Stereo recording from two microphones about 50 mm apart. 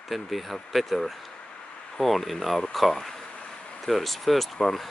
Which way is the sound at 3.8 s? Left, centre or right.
Centre.